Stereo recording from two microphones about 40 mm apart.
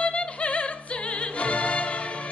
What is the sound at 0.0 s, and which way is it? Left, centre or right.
Music, left.